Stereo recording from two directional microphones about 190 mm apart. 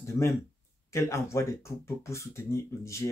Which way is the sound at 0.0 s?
15° left (ahead or behind).